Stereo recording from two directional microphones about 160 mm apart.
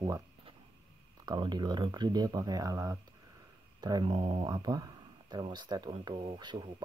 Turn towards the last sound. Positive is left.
turn(degrees=-30)  # may be behind; listen again after turning